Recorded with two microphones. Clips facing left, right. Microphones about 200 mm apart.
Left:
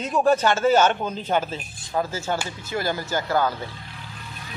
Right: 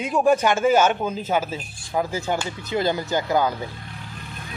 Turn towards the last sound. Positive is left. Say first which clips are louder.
# right 2 dB
turn(degrees=-15)  # may be behind; listen again after turning